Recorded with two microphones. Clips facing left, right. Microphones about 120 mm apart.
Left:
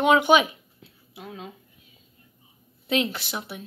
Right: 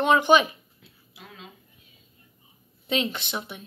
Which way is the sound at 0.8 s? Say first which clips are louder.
Left 6 dB; 45° left (ahead or behind).